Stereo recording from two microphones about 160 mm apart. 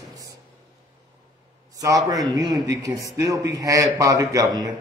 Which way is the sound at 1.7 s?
20° right (ahead or behind).